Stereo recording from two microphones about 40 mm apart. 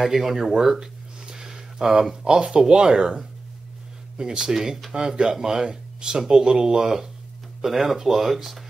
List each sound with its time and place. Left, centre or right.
0.0 s speech: centre
1.2 s a sound: centre
2.2 s speech: right; by 8.6 s centre